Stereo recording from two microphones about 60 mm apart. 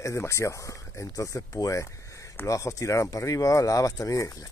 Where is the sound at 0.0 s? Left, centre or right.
Left.